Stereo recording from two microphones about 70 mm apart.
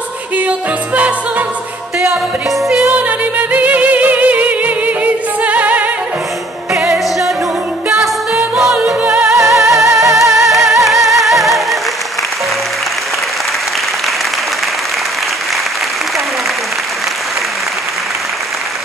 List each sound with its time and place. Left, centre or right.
3.0 s music: right
8.7 s music: right
9.2 s music: right
9.5 s music: centre